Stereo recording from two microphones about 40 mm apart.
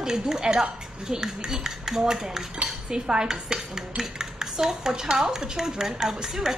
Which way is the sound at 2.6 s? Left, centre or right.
Centre.